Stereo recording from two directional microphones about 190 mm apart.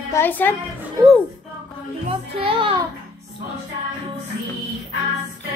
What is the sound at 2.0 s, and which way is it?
Speech, 30° right (ahead or behind).